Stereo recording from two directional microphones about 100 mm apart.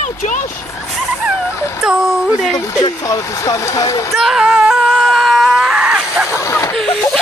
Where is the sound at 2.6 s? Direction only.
40° left (ahead or behind).